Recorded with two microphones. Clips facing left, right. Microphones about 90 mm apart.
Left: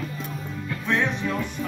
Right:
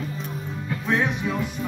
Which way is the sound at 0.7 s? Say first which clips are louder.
Right 1 dB; 15° right (ahead or behind).